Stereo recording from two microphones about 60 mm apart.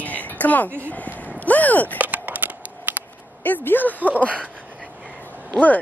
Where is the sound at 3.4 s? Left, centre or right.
Left.